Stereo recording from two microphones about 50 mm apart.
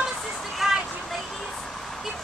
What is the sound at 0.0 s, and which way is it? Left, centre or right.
Vehicle, centre.